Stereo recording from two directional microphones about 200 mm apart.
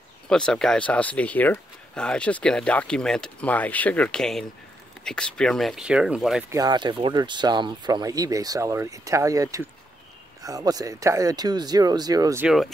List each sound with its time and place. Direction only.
0.3 s speech: 5° left (ahead or behind)
6.5 s speech: 20° right (ahead or behind)
12.4 s speech: centre (ahead or behind)